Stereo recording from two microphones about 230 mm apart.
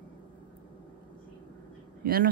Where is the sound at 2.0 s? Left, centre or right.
Right.